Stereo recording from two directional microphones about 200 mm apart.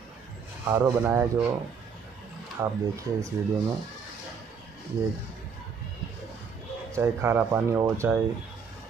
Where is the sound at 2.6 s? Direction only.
15° right (ahead or behind).